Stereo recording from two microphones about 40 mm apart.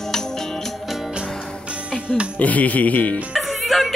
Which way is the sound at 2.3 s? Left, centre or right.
Left.